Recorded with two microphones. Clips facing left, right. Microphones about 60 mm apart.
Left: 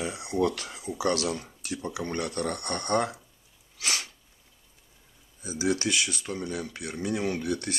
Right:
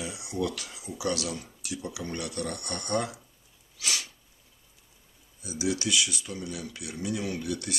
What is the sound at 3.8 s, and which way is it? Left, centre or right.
Sneeze, left.